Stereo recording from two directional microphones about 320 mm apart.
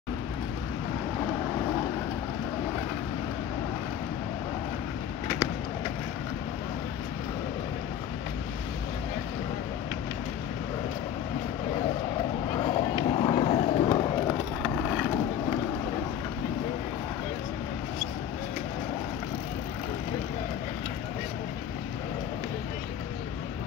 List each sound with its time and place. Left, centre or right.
12.5 s run: centre
14.6 s vehicle: centre